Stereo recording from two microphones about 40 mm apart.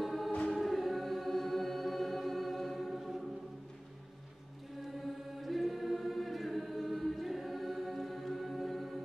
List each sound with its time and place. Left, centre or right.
0.0 s choir: centre
4.8 s choir: centre